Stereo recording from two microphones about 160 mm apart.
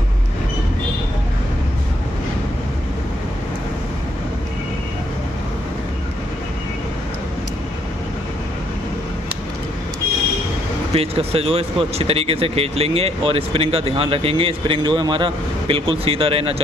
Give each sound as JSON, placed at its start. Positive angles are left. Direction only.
{"t": 10.9, "sound": "speech", "side_deg": -40}